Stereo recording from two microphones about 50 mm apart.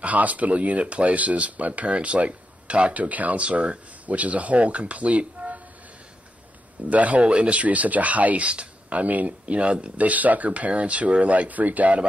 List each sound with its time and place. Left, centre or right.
0.0 s speech: right
6.9 s speech: right